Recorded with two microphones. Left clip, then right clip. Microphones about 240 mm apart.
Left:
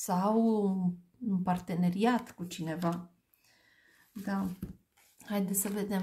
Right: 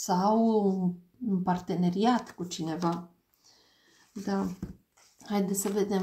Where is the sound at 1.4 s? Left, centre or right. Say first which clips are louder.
Right 4 dB; left.